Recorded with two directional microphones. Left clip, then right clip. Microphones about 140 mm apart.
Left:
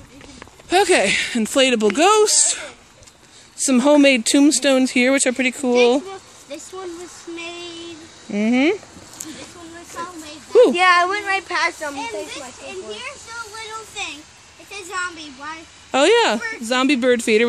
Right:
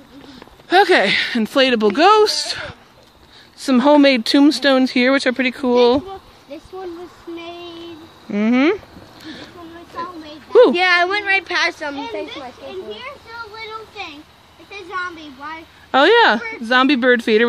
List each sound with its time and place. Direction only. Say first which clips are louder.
0.7 s speech: right 3 dB; 10° left (ahead or behind)
8.3 s speech: right 2 dB; 15° left (ahead or behind)
9.2 s a sound: right 1 dB; 10° left (ahead or behind)
10.7 s a woman's voice: even; 40° right (ahead or behind)
13.6 s a sound: left 1 dB; 20° left (ahead or behind)
14.7 s speech: right 1 dB; 15° left (ahead or behind)